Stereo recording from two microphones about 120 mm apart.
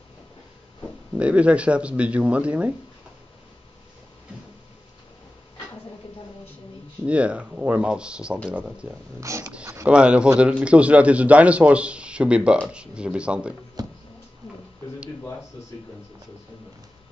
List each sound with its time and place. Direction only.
1.1 s a man's voice: 10° right (ahead or behind)
7.1 s a man's voice: 10° right (ahead or behind)
9.2 s dog: 25° right (ahead or behind)
9.8 s a man's voice: 10° right (ahead or behind)
13.8 s a sound: 35° right (ahead or behind)